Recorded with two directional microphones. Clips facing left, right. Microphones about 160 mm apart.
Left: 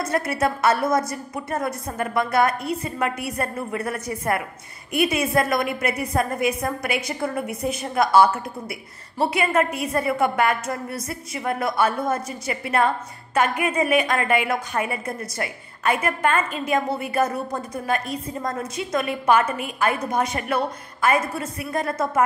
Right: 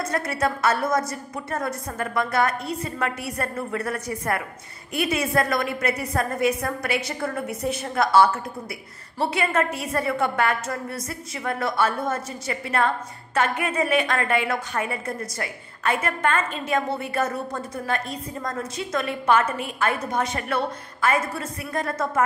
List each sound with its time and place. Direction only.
0.1 s a woman's voice: 20° left (ahead or behind)